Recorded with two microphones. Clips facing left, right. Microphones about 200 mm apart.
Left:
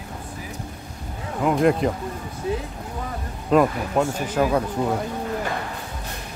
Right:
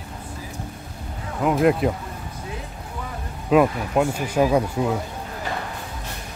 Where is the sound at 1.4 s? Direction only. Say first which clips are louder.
Even; centre (ahead or behind).